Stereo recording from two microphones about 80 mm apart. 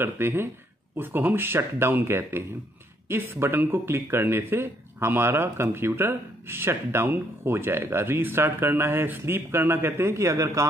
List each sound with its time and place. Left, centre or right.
0.0 s speech: right